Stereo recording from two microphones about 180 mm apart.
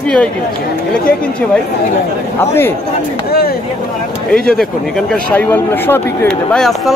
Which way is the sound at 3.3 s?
60° left (ahead or behind).